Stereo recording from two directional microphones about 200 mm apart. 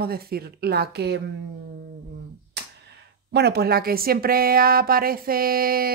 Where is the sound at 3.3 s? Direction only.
55° right (ahead or behind).